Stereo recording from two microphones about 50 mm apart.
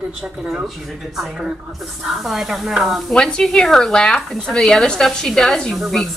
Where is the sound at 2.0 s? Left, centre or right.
Centre.